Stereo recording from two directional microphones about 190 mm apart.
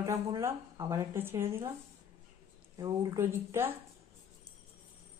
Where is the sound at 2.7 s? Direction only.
20° right (ahead or behind).